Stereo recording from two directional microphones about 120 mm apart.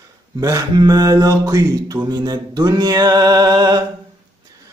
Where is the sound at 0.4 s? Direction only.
30° right (ahead or behind).